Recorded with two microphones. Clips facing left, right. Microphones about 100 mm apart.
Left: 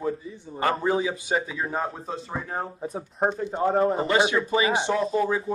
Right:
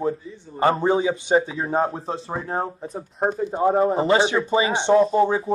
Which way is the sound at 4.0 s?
30° right (ahead or behind).